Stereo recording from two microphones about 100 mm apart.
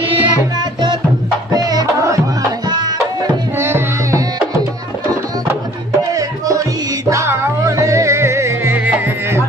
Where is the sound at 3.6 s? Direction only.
25° right (ahead or behind).